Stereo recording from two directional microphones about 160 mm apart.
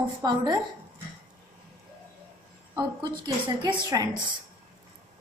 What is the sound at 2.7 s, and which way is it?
A woman's voice, 30° right (ahead or behind).